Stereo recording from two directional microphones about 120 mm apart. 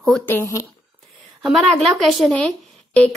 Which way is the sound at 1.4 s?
Centre (ahead or behind).